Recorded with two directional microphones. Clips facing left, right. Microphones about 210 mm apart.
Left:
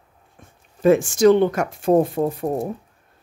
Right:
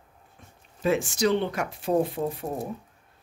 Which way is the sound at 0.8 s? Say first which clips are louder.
Left 10 dB; 45° left (ahead or behind).